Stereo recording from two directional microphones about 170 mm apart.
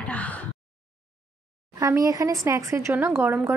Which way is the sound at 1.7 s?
20° right (ahead or behind).